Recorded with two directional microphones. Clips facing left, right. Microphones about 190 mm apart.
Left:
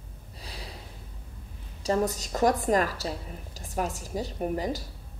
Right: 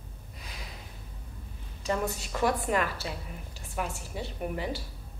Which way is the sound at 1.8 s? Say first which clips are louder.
Left 4 dB; 35° left (ahead or behind).